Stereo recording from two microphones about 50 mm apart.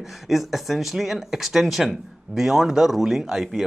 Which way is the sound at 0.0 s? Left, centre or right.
Centre.